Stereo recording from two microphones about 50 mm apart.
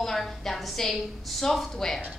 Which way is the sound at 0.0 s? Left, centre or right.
Centre.